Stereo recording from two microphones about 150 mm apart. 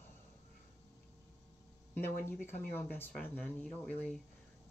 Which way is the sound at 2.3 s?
10° left (ahead or behind).